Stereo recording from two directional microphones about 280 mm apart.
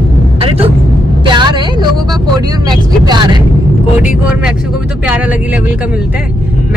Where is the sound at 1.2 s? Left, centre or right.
Centre.